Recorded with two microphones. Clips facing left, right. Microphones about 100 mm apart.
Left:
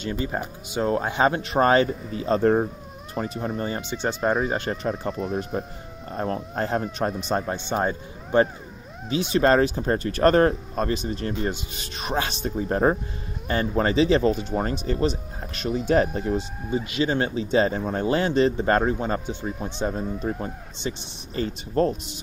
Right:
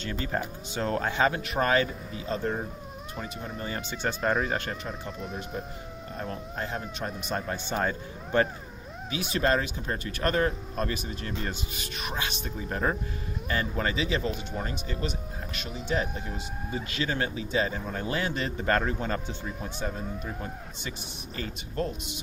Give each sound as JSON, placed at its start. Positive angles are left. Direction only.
{"t": 0.0, "sound": "speech", "side_deg": 15}
{"t": 1.2, "sound": "speech", "side_deg": 30}
{"t": 3.2, "sound": "speech", "side_deg": 35}
{"t": 3.9, "sound": "speech", "side_deg": 20}
{"t": 4.2, "sound": "speech", "side_deg": 5}
{"t": 4.6, "sound": "speech", "side_deg": 40}
{"t": 7.2, "sound": "speech", "side_deg": 25}
{"t": 9.5, "sound": "speech", "side_deg": 40}
{"t": 16.7, "sound": "speech", "side_deg": 25}
{"t": 21.4, "sound": "speech", "side_deg": 35}